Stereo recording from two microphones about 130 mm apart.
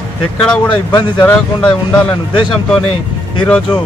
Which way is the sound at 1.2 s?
15° left (ahead or behind).